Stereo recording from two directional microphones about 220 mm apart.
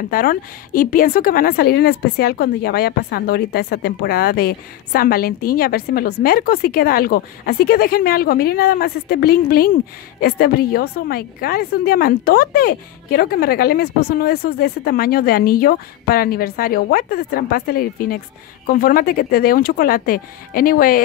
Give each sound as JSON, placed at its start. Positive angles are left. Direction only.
{"t": 0.1, "sound": "a woman's voice", "side_deg": 40}